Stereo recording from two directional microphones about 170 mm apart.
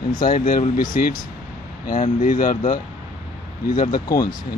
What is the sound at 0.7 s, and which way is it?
Speech, 60° left (ahead or behind).